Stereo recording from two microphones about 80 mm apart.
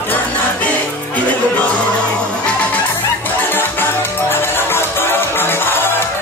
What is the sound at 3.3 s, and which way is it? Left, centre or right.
Music, left.